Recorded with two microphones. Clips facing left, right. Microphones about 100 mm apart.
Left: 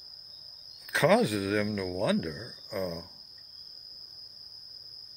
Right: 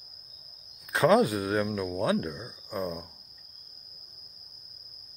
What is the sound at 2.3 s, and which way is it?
Speech, 20° right (ahead or behind).